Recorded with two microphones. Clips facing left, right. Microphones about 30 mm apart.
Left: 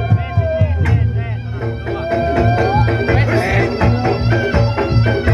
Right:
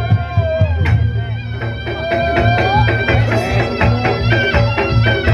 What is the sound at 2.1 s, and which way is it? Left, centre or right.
Music, right.